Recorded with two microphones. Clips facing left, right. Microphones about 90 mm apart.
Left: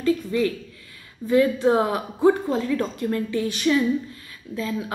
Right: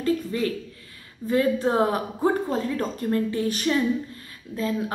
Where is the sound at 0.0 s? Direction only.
40° right (ahead or behind).